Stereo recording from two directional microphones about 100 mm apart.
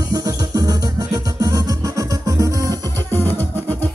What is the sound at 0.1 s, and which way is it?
Music, 40° right (ahead or behind).